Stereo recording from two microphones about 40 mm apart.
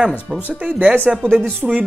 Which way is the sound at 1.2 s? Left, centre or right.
Centre.